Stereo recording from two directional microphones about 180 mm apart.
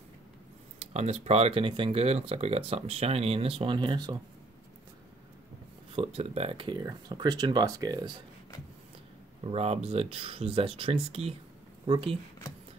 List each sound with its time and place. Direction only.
0.7 s speech: 40° right (ahead or behind)
5.9 s speech: 35° right (ahead or behind)
9.4 s speech: 35° right (ahead or behind)